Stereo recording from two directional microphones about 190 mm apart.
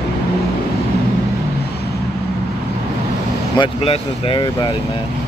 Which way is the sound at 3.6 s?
30° left (ahead or behind).